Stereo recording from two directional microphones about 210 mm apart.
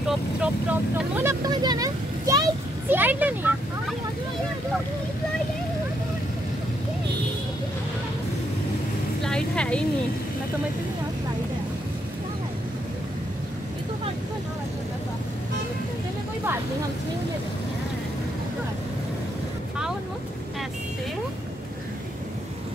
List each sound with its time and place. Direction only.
0.4 s speech: 5° right (ahead or behind)
1.5 s speech: 20° right (ahead or behind)
9.2 s a woman's voice: 5° left (ahead or behind)